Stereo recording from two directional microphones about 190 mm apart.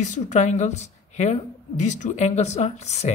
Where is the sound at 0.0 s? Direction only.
40° left (ahead or behind).